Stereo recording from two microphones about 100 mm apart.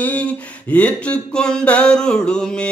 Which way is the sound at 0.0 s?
15° left (ahead or behind).